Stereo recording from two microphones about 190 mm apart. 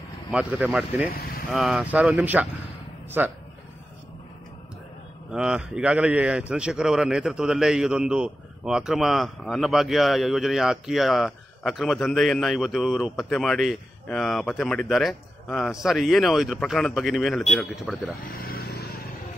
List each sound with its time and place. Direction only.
0.3 s a man's voice: 5° right (ahead or behind)
1.1 s vehicle: 55° left (ahead or behind)
1.5 s speech: 5° right (ahead or behind)
5.3 s a man's voice: 5° right (ahead or behind)
18.2 s vehicle: 55° left (ahead or behind)